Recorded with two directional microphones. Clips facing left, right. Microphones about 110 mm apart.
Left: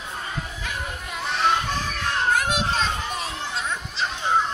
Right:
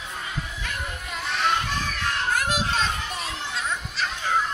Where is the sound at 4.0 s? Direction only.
25° left (ahead or behind).